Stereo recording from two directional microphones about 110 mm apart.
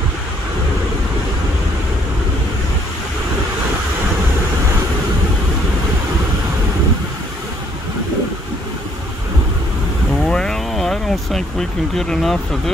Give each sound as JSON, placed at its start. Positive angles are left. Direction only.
{"t": 10.2, "sound": "vehicle", "side_deg": 5}
{"t": 11.9, "sound": "speech", "side_deg": 5}